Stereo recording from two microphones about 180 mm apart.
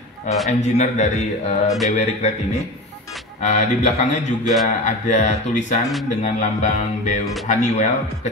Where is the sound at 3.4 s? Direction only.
40° left (ahead or behind).